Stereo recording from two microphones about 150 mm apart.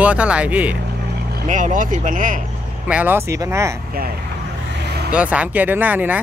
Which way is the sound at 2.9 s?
10° right (ahead or behind).